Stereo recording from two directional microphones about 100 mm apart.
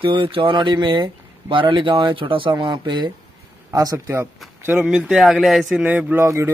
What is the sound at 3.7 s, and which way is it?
Speech, 35° right (ahead or behind).